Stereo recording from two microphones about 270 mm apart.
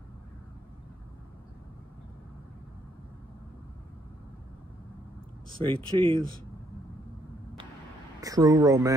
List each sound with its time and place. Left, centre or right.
5.6 s speech: centre
8.2 s speech: centre